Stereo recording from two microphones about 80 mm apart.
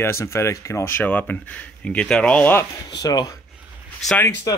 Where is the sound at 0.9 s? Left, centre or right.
Left.